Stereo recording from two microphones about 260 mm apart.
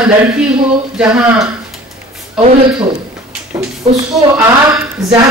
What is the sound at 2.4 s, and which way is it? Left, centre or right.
Speech, centre.